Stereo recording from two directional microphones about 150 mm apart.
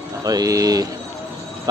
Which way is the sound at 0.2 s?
25° right (ahead or behind).